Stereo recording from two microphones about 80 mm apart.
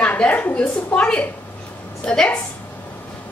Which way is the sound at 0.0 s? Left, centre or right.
Centre.